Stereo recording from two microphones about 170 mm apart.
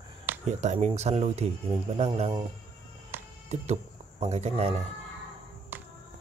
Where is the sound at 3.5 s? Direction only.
40° right (ahead or behind).